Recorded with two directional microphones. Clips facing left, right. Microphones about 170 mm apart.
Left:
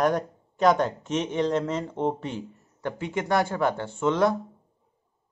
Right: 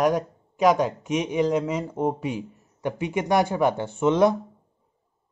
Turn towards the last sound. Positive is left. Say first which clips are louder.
# right 3 dB
turn(degrees=-15)  # may be behind; listen again after turning